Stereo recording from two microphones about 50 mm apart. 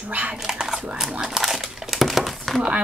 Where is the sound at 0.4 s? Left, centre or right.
Centre.